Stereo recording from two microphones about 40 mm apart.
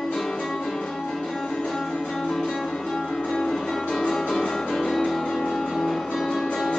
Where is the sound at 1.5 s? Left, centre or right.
Left.